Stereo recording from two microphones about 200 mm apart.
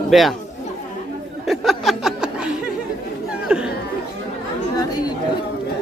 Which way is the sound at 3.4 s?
5° right (ahead or behind).